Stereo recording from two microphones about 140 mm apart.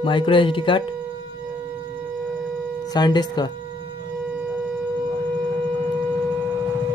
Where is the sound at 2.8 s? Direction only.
30° left (ahead or behind).